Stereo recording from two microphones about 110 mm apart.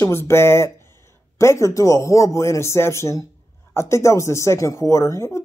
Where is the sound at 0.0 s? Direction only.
25° left (ahead or behind).